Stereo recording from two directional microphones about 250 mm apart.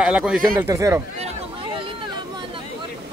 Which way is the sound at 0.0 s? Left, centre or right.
Centre.